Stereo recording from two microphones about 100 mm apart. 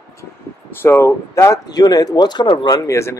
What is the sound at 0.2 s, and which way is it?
Speech, 25° left (ahead or behind).